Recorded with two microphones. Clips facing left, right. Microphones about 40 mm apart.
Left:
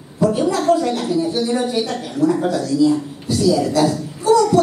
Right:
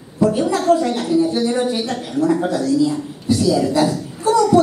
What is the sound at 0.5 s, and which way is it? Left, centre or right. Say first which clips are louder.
A woman's voice: even; right.